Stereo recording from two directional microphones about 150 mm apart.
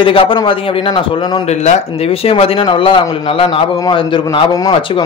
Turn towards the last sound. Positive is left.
turn(degrees=35)  # may be behind; listen again after turning